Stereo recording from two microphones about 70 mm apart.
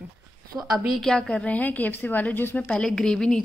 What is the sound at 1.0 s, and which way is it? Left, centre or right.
Speech, centre.